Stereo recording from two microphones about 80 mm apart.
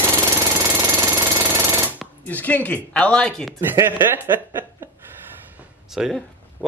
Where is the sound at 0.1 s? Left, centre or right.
Right.